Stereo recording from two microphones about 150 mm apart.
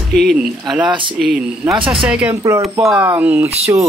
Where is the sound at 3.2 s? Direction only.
10° right (ahead or behind).